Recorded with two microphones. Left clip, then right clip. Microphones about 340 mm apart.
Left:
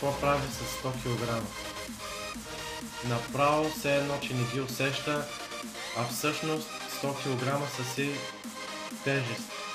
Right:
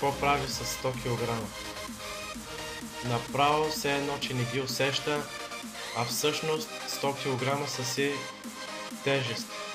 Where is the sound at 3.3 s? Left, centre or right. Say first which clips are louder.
Right 1 dB; right.